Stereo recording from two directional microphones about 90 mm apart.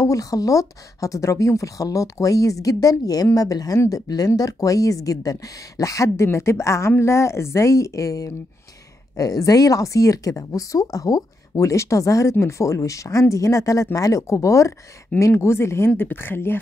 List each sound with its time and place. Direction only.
0.0 s speech: 40° left (ahead or behind); by 16.5 s 25° left (ahead or behind)